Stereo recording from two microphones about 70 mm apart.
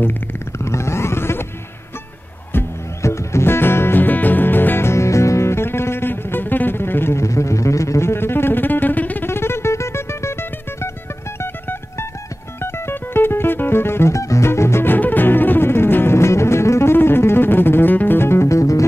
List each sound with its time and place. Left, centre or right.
0.7 s music: left
2.5 s music: left
3.0 s music: left
9.3 s music: left
12.5 s music: left